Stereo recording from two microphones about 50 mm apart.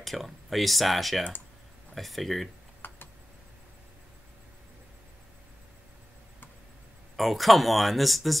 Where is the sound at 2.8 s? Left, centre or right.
Left.